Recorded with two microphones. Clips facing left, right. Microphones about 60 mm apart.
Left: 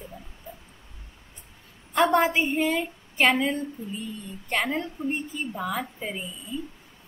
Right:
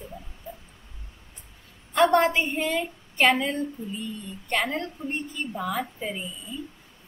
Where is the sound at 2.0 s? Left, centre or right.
Centre.